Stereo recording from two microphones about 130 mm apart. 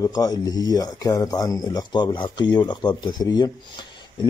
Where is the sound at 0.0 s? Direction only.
30° left (ahead or behind).